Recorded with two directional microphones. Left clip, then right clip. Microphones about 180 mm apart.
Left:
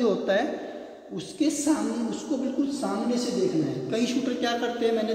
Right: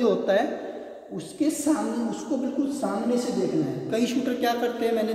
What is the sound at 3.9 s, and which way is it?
A man's voice, 15° right (ahead or behind).